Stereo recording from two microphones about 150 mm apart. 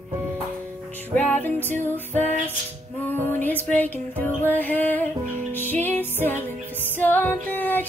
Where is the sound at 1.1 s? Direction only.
10° left (ahead or behind).